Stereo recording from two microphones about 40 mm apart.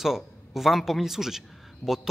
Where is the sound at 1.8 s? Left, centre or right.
Left.